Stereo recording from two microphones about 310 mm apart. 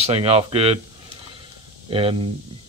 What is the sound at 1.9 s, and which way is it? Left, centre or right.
Speech, centre.